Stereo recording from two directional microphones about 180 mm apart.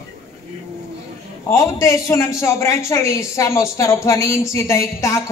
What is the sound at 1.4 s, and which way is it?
A man's voice, 20° left (ahead or behind).